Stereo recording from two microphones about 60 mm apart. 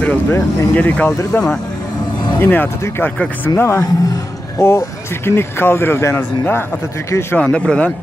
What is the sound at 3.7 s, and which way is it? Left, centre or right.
Speech, left.